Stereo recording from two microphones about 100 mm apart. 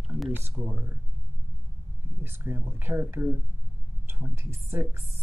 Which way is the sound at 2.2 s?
25° right (ahead or behind).